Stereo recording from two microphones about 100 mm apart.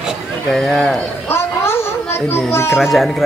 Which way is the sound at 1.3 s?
25° left (ahead or behind).